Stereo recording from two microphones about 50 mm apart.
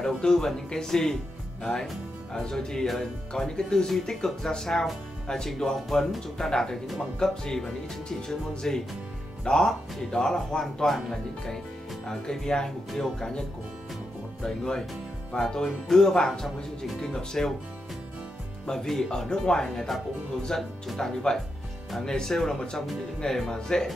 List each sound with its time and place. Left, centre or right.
0.0 s speech: centre
14.4 s speech: centre
18.7 s speech: centre